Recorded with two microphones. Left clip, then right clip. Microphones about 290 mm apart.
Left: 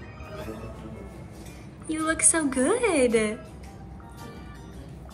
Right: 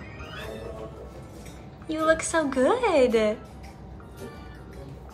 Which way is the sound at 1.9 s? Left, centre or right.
Centre.